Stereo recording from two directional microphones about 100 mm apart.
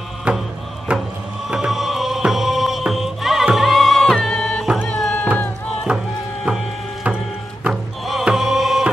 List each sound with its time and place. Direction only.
0.3 s music: 10° right (ahead or behind); by 5.3 s 10° left (ahead or behind)
5.9 s music: 10° right (ahead or behind)